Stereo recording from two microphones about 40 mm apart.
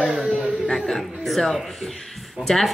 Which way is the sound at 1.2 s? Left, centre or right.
Centre.